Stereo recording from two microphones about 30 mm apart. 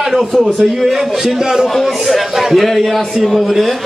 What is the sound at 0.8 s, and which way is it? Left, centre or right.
A man's voice, centre.